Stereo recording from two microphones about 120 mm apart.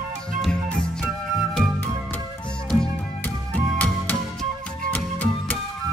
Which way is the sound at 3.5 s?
10° left (ahead or behind).